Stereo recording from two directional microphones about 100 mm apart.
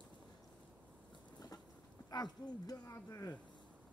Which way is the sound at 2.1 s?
45° left (ahead or behind).